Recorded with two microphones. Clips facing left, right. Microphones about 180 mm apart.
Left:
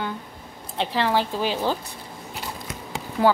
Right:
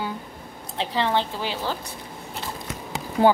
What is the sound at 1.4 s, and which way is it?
Speech, 15° left (ahead or behind).